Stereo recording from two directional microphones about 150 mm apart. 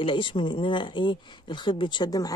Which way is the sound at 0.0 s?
35° left (ahead or behind).